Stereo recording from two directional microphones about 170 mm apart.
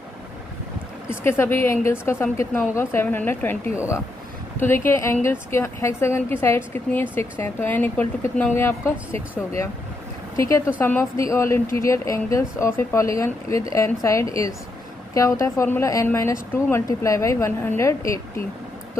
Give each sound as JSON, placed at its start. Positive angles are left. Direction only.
{"t": 1.2, "sound": "a woman's voice", "side_deg": 15}
{"t": 10.3, "sound": "a woman's voice", "side_deg": 20}